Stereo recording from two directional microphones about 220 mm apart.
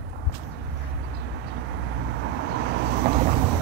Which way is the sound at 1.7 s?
55° right (ahead or behind).